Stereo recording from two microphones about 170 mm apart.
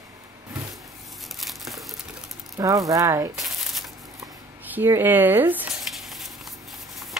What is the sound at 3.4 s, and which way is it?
Shuffling cards, centre (ahead or behind).